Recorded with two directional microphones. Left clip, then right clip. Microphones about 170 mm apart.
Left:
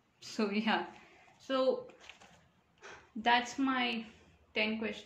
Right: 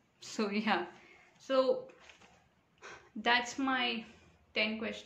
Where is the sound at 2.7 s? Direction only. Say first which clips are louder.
Even; 20° right (ahead or behind).